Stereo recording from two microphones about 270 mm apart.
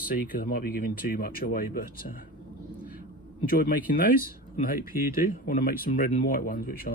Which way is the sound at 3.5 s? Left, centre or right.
Left.